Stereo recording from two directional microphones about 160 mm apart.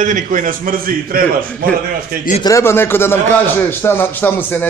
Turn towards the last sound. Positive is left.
turn(degrees=10)  # may be behind; listen again after turning